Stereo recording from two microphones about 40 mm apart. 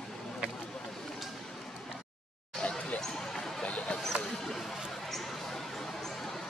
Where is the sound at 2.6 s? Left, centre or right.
Left.